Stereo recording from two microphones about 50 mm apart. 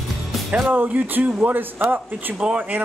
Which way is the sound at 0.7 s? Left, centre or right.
Right.